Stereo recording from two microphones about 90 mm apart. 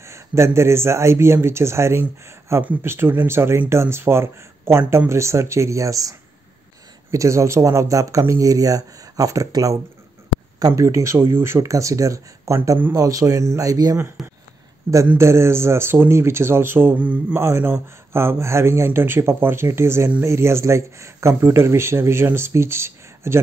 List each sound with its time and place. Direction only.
0.0 s speech: 30° right (ahead or behind)
10.8 s speech: 35° right (ahead or behind)
14.2 s speech: centre (ahead or behind)
15.1 s speech: 30° right (ahead or behind)